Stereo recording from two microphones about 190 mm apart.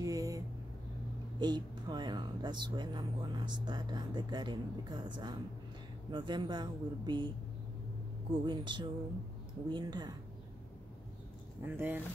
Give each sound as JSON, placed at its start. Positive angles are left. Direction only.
{"t": 0.0, "sound": "a sound", "side_deg": -20}
{"t": 1.4, "sound": "speech", "side_deg": -20}
{"t": 8.5, "sound": "speech", "side_deg": -25}
{"t": 11.6, "sound": "speech", "side_deg": -10}